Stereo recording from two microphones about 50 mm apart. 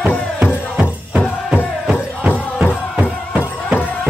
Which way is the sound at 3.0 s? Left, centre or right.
Right.